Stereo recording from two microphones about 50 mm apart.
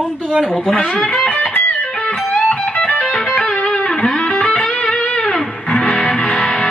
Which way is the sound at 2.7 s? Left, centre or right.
Left.